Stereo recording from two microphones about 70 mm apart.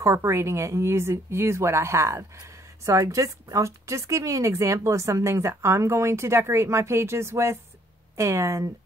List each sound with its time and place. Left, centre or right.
0.0 s a woman's voice: right